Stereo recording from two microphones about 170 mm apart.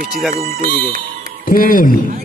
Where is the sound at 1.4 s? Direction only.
55° left (ahead or behind).